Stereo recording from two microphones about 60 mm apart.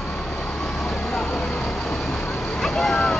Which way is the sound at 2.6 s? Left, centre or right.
Centre.